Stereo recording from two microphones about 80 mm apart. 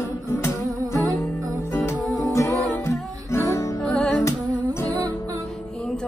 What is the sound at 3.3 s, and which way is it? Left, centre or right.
Music, left.